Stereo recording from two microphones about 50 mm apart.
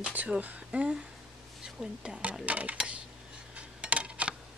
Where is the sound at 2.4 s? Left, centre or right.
Right.